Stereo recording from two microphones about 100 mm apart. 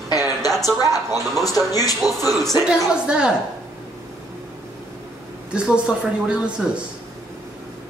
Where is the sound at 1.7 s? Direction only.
35° left (ahead or behind).